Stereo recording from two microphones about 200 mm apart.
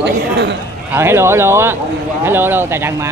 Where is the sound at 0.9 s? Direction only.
10° right (ahead or behind).